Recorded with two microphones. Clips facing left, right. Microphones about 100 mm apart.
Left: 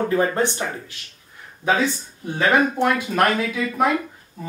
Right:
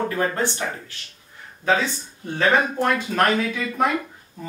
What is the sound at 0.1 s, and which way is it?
Speech, 20° left (ahead or behind).